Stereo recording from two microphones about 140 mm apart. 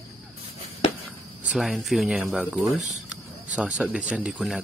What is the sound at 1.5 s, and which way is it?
Speech, centre (ahead or behind).